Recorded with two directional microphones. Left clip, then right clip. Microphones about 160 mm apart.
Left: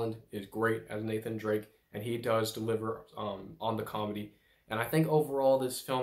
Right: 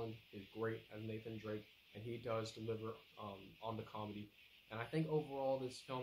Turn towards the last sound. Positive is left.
turn(degrees=-20)  # may be behind; listen again after turning